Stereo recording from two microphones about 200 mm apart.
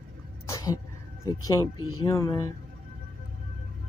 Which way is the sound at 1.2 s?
15° left (ahead or behind).